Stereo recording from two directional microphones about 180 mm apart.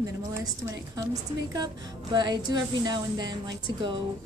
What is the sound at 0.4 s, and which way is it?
A woman's voice, 20° right (ahead or behind).